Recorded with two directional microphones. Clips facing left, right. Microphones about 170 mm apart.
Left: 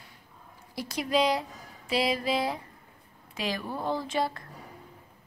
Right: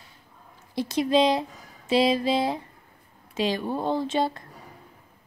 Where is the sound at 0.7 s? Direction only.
25° right (ahead or behind).